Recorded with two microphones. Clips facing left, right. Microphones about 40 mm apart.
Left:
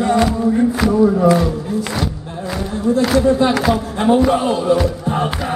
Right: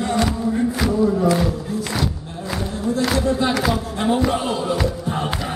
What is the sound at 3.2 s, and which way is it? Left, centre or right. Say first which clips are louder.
Speech: left 6 dB; centre.